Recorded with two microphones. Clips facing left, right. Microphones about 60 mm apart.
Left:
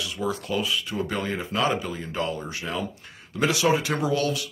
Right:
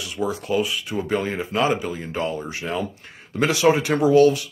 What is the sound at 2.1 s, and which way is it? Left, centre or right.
Speech, right.